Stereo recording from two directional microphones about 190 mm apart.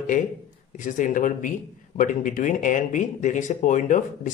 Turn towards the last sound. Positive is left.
turn(degrees=40)  # may be behind; listen again after turning